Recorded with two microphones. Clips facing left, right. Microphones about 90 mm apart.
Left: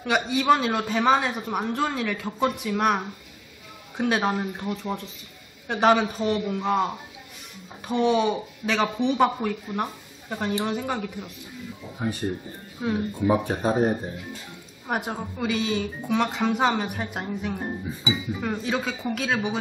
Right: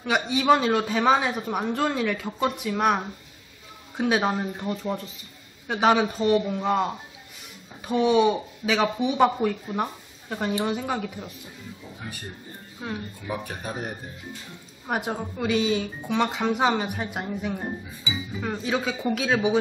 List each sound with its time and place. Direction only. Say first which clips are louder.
0.0 s a man's voice: even; centre (ahead or behind)
12.8 s a man's voice: left 6 dB; centre (ahead or behind)
13.4 s speech: left 10 dB; 30° left (ahead or behind)
14.9 s a man's voice: right 1 dB; centre (ahead or behind)